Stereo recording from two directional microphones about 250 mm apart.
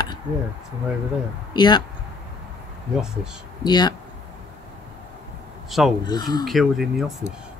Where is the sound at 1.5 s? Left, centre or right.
Centre.